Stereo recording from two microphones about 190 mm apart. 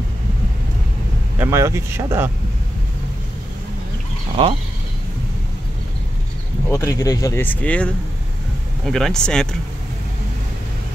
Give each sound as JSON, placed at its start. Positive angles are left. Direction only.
{"t": 1.4, "sound": "speech", "side_deg": -15}
{"t": 6.7, "sound": "speech", "side_deg": 15}